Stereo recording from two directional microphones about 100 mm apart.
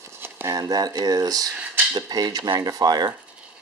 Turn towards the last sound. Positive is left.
turn(degrees=-40)  # may be behind; listen again after turning